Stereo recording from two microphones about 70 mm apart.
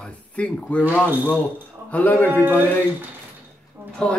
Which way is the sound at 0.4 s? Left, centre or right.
Centre.